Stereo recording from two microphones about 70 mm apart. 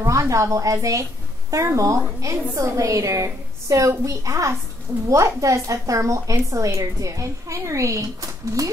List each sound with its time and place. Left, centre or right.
0.0 s a woman's voice: right